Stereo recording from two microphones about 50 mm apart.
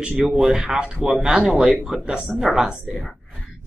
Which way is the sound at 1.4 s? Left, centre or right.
Centre.